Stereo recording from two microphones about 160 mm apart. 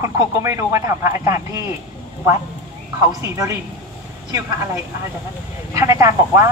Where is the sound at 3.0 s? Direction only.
20° right (ahead or behind).